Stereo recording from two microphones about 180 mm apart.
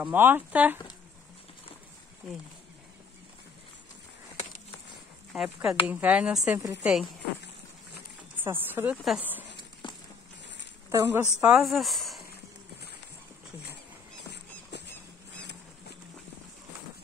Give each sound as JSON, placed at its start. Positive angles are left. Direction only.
{"t": 0.0, "sound": "speech", "side_deg": -10}
{"t": 2.2, "sound": "speech", "side_deg": 0}
{"t": 5.3, "sound": "speech", "side_deg": -5}
{"t": 8.5, "sound": "speech", "side_deg": -10}
{"t": 8.9, "sound": "speech", "side_deg": 0}
{"t": 9.6, "sound": "a sound", "side_deg": 25}
{"t": 10.9, "sound": "speech", "side_deg": -15}
{"t": 11.4, "sound": "speech", "side_deg": -5}
{"t": 14.7, "sound": "vehicle", "side_deg": 70}